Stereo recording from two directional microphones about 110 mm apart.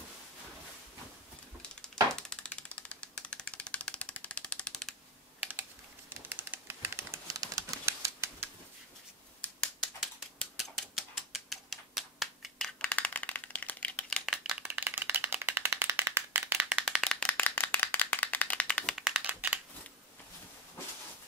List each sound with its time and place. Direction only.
1.6 s typewriter: 10° left (ahead or behind)
5.4 s typewriter: 20° right (ahead or behind)
10.4 s typewriter: centre (ahead or behind)
14.1 s a sound: centre (ahead or behind)
14.6 s rattle: 20° right (ahead or behind)
17.0 s rattle: 5° left (ahead or behind)
19.1 s a sound: 15° right (ahead or behind)